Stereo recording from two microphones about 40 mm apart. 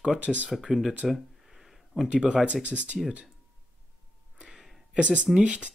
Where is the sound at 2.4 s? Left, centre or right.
Right.